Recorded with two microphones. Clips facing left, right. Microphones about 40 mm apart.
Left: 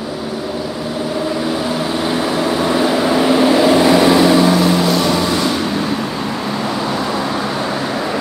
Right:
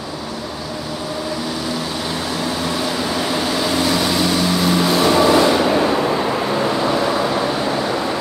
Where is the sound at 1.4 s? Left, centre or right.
Left.